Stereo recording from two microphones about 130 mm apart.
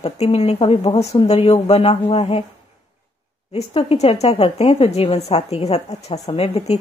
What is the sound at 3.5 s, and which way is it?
Speech, 50° left (ahead or behind).